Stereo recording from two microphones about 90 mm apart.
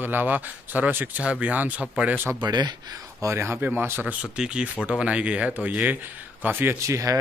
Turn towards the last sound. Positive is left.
turn(degrees=-35)  # may be behind; listen again after turning